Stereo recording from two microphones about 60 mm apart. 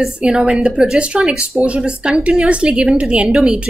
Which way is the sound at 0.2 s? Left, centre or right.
Centre.